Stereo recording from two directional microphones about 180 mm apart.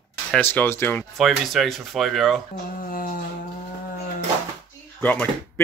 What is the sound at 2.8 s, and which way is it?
Humming, 50° left (ahead or behind).